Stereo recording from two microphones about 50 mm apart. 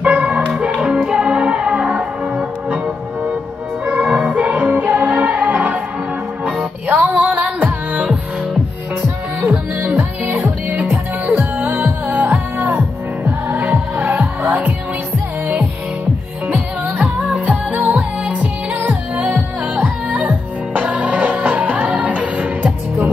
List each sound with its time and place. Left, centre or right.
0.0 s music: right
3.8 s music: right
9.4 s music: right
12.6 s music: right
17.0 s music: right